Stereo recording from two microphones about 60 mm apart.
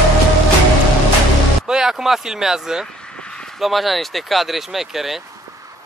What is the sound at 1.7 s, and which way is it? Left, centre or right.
Speech, centre.